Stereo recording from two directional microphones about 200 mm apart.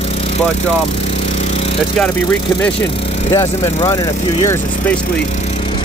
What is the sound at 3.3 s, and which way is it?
Speech, 15° left (ahead or behind).